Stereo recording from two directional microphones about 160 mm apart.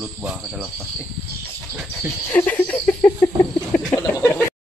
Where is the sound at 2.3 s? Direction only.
15° left (ahead or behind).